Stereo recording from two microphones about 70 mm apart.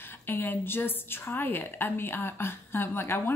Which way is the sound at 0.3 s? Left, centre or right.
Left.